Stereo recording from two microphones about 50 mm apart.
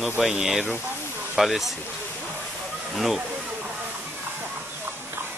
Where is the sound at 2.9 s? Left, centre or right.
Centre.